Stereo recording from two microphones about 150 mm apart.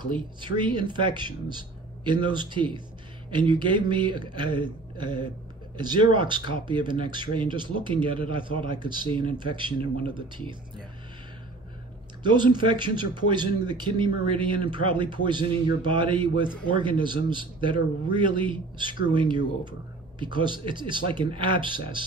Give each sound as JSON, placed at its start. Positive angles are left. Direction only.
{"t": 0.0, "sound": "speech", "side_deg": -30}
{"t": 12.2, "sound": "speech", "side_deg": -30}